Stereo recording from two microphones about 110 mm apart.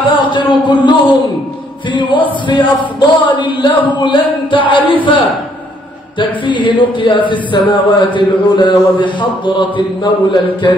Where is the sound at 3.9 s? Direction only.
45° left (ahead or behind).